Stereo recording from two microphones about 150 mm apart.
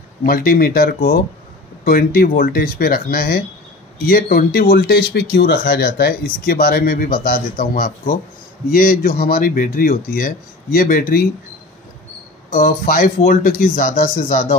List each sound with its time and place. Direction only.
0.2 s speech: 80° left
12.4 s speech: 80° left; by 14.5 s 60° left (ahead or behind)